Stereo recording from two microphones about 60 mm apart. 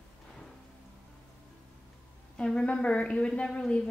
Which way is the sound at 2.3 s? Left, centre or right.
Centre.